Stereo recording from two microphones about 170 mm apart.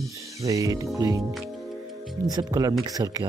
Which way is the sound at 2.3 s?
25° right (ahead or behind).